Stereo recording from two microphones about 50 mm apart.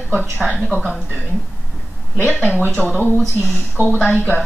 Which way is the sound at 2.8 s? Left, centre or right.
Left.